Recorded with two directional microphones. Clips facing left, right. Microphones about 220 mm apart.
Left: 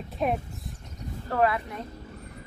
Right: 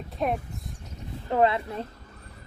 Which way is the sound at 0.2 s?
Centre (ahead or behind).